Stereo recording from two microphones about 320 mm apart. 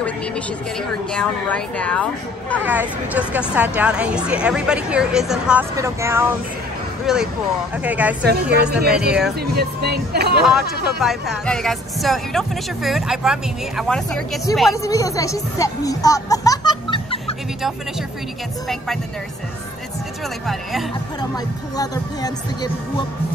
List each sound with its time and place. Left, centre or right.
0.7 s speech: centre
9.6 s speech: right
11.0 s speech: centre
21.7 s speech: centre